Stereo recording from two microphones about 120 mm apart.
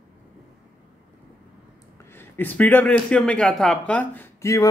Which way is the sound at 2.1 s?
15° left (ahead or behind).